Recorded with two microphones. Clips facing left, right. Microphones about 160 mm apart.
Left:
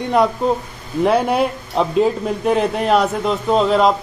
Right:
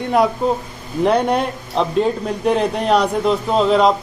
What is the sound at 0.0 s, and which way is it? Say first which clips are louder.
Speech: even; centre (ahead or behind).